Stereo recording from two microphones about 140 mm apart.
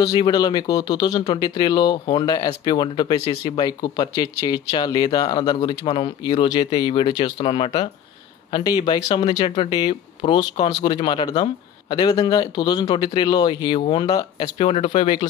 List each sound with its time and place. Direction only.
0.0 s speech: 30° left (ahead or behind)
14.6 s speech: 45° left (ahead or behind)